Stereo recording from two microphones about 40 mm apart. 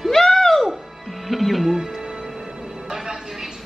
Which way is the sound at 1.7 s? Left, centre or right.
Centre.